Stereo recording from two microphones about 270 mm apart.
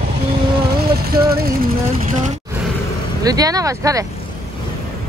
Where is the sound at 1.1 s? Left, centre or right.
Right.